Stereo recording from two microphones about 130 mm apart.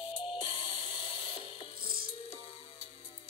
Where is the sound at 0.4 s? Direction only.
40° left (ahead or behind).